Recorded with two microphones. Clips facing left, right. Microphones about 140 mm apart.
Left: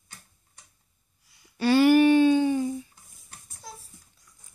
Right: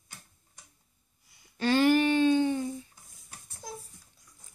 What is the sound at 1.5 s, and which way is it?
Speech, 10° left (ahead or behind).